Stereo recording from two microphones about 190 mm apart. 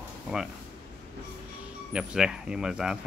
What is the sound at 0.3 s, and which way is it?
Speech, centre (ahead or behind).